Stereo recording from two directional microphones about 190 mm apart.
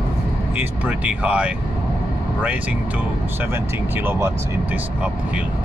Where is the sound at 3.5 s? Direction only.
10° right (ahead or behind).